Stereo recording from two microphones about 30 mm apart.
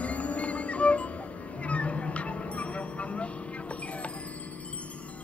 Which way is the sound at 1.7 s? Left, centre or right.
Left.